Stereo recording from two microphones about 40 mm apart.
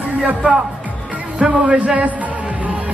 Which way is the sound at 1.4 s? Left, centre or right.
Right.